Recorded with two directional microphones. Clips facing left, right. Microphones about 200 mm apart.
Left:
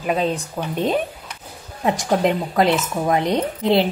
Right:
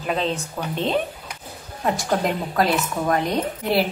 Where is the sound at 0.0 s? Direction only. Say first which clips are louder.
Left 3 dB; 5° left (ahead or behind).